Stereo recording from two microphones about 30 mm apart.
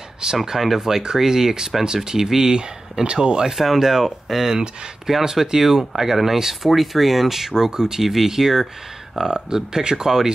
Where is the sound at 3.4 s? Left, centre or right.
Centre.